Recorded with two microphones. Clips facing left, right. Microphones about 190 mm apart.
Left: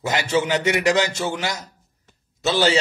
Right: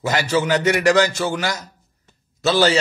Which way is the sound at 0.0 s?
20° left (ahead or behind).